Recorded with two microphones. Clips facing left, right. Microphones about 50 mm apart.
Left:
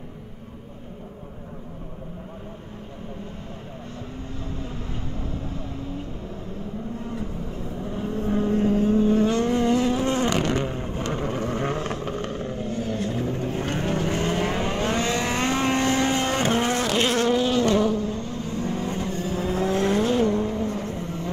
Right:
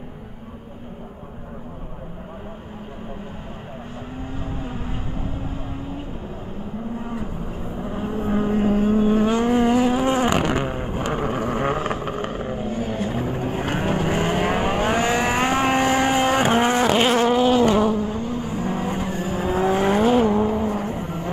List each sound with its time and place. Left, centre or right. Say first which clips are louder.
7.0 s vehicle: right 2 dB; centre